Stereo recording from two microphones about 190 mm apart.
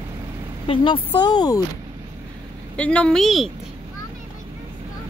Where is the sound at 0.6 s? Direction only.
30° left (ahead or behind).